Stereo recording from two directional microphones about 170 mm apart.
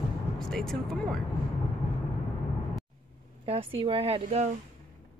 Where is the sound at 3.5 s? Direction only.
35° right (ahead or behind).